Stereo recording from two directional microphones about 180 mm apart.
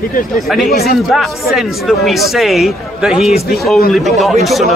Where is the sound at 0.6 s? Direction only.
60° left (ahead or behind).